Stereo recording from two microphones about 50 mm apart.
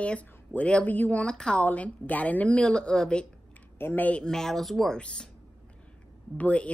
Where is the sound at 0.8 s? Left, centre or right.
Left.